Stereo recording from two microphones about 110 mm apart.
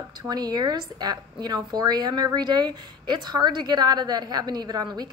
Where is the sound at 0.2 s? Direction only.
35° right (ahead or behind).